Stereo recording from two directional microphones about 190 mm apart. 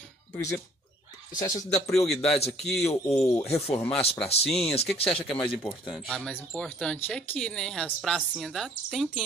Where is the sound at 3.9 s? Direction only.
30° left (ahead or behind).